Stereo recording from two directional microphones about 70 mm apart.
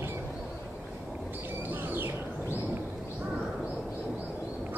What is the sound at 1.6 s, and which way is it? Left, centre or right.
Bird, right.